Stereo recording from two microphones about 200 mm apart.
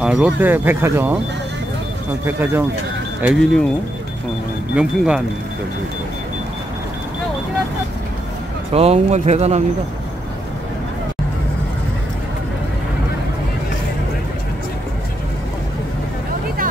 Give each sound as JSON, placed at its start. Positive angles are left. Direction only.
{"t": 0.0, "sound": "speech", "side_deg": -5}
{"t": 2.2, "sound": "speech", "side_deg": -10}
{"t": 4.7, "sound": "speech", "side_deg": -5}
{"t": 8.7, "sound": "speech", "side_deg": -30}